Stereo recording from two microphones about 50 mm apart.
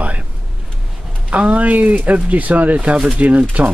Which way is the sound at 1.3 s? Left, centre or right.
Right.